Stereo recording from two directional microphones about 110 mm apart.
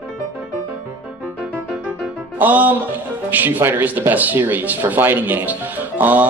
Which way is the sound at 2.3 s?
15° right (ahead or behind).